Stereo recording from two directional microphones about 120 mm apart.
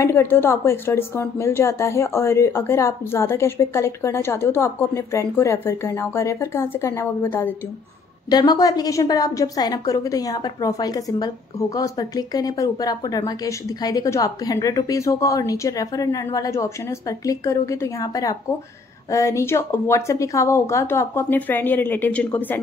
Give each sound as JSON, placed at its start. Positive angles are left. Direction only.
{"t": 0.0, "sound": "a woman's voice", "side_deg": 20}
{"t": 8.3, "sound": "a woman's voice", "side_deg": 30}